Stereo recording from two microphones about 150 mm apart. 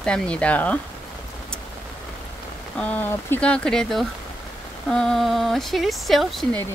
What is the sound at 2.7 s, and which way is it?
Speech, 10° left (ahead or behind).